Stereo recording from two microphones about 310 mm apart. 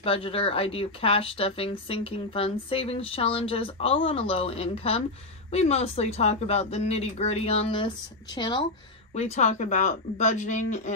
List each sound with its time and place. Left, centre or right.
0.0 s speech: centre